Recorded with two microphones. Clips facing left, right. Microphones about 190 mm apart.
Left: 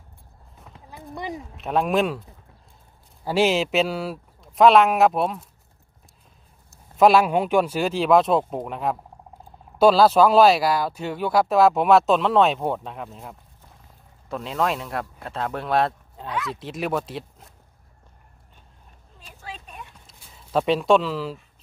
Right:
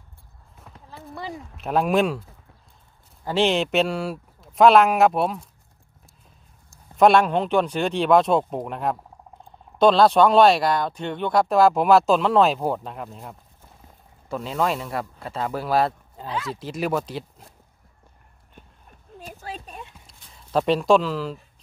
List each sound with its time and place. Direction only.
0.8 s speech: 15° left (ahead or behind)
1.6 s speech: centre (ahead or behind)
3.3 s speech: 5° left (ahead or behind)
6.7 s speech: 5° left (ahead or behind)
19.1 s a sound: 45° right (ahead or behind)
20.1 s speech: centre (ahead or behind)